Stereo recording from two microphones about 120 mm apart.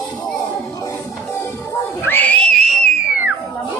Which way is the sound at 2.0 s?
15° left (ahead or behind).